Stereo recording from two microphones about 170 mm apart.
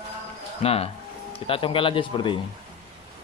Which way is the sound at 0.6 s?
35° left (ahead or behind).